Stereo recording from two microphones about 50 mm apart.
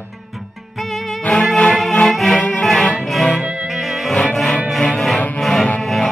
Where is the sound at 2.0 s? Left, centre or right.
Centre.